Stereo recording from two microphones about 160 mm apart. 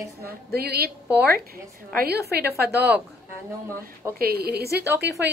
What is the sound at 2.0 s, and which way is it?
Speech, 80° right.